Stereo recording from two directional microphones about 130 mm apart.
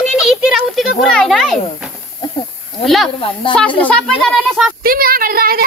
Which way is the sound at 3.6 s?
10° left (ahead or behind).